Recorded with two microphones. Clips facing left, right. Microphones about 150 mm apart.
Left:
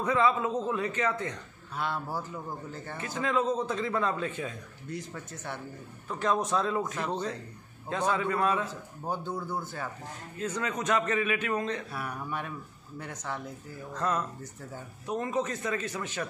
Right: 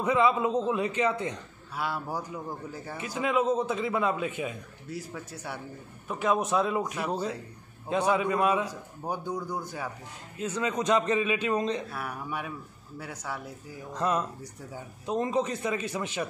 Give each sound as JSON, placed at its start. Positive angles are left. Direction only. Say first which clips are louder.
{"t": 0.0, "sound": "a man's voice", "louder": "right 2 dB", "side_deg": -15}
{"t": 11.9, "sound": "a man's voice", "louder": "even", "side_deg": -5}